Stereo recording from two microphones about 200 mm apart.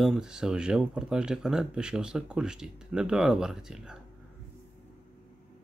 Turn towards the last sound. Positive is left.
turn(degrees=-5)  # may be behind; listen again after turning